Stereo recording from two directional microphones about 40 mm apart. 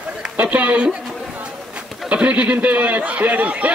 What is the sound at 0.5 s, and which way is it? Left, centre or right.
Speech, right.